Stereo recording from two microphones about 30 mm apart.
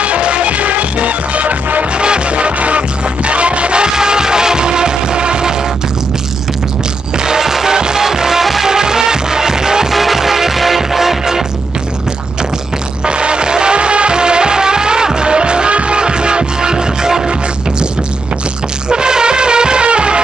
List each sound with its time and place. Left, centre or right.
0.0 s music: right
2.0 s music: right
3.9 s music: right
7.2 s music: centre
8.7 s music: right
9.9 s music: centre
13.0 s music: right
18.9 s music: right